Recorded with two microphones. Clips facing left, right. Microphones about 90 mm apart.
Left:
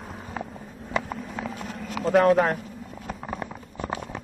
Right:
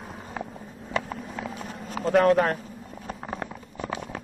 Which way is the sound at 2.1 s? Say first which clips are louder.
Left 1 dB; 5° left (ahead or behind).